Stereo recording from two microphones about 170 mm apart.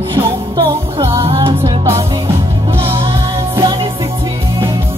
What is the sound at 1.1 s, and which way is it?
Music, 30° right (ahead or behind).